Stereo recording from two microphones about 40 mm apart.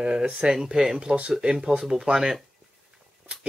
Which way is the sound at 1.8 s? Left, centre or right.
Centre.